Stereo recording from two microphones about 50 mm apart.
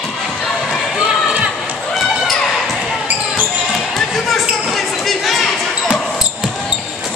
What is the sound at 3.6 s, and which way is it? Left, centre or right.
Basketball bounce, centre.